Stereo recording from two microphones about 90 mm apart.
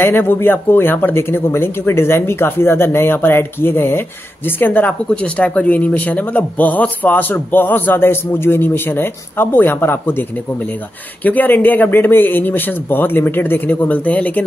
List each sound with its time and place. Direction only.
0.0 s speech: 25° left (ahead or behind)
11.2 s speech: 20° left (ahead or behind)